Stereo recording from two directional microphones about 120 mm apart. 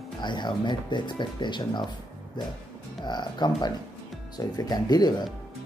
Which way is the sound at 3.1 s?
35° left (ahead or behind).